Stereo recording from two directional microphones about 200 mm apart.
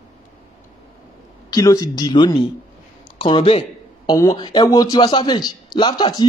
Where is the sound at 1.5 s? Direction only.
15° left (ahead or behind).